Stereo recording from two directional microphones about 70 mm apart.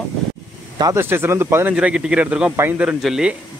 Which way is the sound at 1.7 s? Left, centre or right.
Centre.